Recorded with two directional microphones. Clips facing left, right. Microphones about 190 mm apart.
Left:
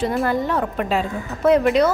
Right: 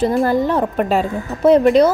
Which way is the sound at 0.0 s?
35° right (ahead or behind).